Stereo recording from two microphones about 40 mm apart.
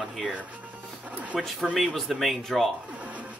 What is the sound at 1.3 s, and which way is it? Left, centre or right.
Speech, centre.